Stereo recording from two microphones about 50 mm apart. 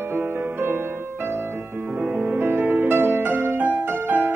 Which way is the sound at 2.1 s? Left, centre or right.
Right.